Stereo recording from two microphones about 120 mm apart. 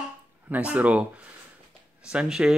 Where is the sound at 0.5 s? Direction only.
10° right (ahead or behind).